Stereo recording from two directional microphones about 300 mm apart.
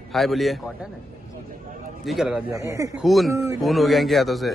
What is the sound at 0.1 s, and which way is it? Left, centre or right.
Speech, centre.